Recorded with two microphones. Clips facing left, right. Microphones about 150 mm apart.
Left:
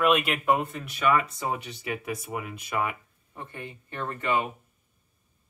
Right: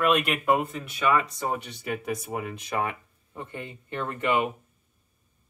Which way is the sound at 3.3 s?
15° right (ahead or behind).